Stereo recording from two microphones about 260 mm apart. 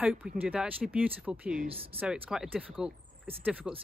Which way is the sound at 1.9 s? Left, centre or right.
Centre.